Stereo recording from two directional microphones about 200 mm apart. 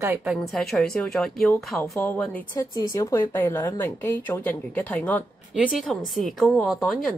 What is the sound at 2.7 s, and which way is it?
A woman's voice, 15° left (ahead or behind).